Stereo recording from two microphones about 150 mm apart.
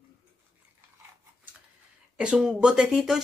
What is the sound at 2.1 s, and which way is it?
Speech, 5° right (ahead or behind).